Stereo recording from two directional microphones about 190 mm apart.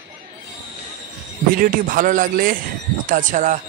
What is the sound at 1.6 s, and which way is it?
A man's voice, 45° right (ahead or behind).